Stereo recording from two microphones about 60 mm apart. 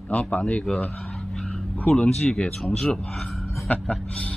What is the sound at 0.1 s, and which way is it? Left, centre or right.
Speech, left.